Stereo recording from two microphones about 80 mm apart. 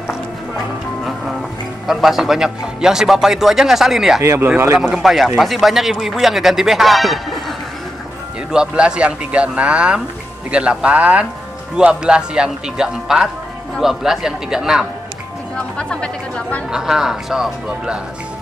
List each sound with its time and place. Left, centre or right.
1.9 s a man's voice: centre
4.2 s speech: right
4.7 s a man's voice: centre
8.5 s a man's voice: centre
15.5 s speech: centre
16.7 s speech: centre